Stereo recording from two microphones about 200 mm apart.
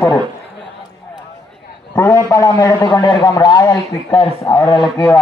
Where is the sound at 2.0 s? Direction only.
15° left (ahead or behind).